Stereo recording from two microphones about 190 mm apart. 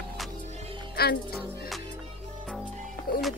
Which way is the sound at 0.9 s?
55° left (ahead or behind).